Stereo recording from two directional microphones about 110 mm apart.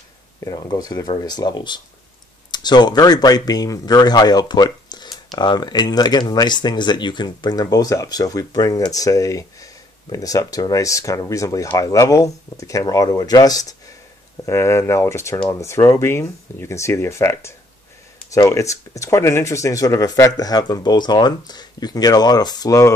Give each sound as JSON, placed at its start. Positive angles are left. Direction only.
{"t": 0.4, "sound": "speech", "side_deg": 30}
{"t": 14.4, "sound": "speech", "side_deg": 25}